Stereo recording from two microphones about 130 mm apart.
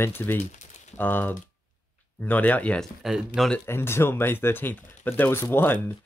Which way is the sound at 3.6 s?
20° left (ahead or behind).